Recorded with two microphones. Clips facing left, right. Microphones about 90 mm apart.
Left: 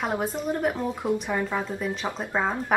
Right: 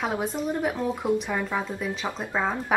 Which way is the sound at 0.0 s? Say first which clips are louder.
Even; centre (ahead or behind).